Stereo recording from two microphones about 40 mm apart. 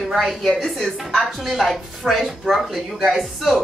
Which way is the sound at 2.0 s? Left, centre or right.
Right.